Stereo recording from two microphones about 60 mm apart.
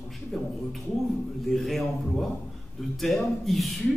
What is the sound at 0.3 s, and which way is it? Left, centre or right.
Speech, centre.